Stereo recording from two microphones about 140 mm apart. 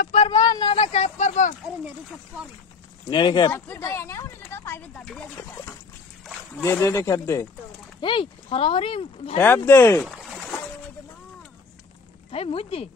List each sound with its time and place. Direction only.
0.3 s a sound: 30° left (ahead or behind); by 1.5 s 60° left (ahead or behind)
3.1 s speech: 30° left (ahead or behind)
3.5 s speech: 20° left (ahead or behind)
6.6 s speech: 20° left (ahead or behind)
8.0 s speech: 35° left (ahead or behind)
9.7 s speech: 15° left (ahead or behind)
10.0 s a sound: centre (ahead or behind)
12.3 s speech: 45° left (ahead or behind)